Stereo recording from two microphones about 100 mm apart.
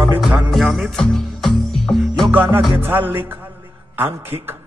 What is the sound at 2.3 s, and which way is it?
Music, 20° right (ahead or behind).